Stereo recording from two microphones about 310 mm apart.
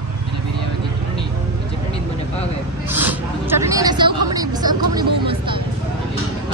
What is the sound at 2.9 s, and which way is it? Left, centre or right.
Speech, centre.